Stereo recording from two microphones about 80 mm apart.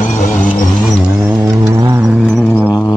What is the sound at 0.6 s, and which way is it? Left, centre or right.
Music, centre.